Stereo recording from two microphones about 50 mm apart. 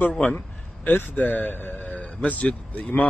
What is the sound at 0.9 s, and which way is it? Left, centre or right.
A man's voice, left.